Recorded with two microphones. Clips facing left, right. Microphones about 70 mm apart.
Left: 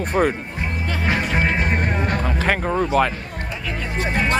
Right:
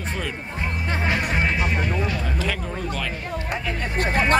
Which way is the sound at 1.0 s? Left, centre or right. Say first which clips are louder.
Left 3 dB; left.